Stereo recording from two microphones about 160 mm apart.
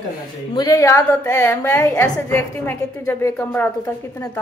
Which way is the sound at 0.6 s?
20° left (ahead or behind).